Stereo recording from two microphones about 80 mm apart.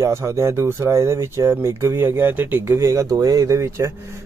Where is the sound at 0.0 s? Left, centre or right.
Right.